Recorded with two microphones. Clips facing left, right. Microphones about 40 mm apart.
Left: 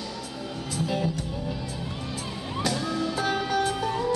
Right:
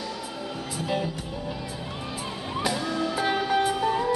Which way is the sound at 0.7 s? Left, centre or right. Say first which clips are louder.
Left 1 dB; centre.